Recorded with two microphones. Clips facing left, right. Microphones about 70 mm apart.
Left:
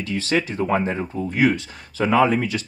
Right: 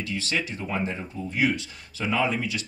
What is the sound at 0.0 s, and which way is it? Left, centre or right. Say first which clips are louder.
Speech: left 7 dB; left.